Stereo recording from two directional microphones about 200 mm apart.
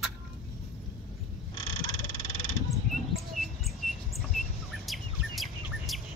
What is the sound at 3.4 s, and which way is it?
Chirp, centre (ahead or behind).